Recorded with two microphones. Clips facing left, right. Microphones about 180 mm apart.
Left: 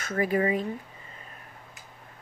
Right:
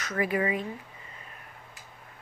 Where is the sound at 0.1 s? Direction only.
35° left (ahead or behind).